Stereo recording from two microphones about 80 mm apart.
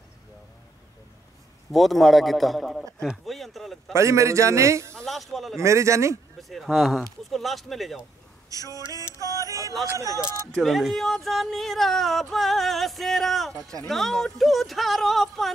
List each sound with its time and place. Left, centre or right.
1.7 s speech: centre
3.3 s a sound: centre
3.9 s a man's voice: right
4.9 s speech: centre
5.6 s a man's voice: right
6.5 s speech: centre
8.5 s a sound: right
8.7 s music: left
9.2 s music: right
9.9 s a man's voice: right
10.5 s speech: centre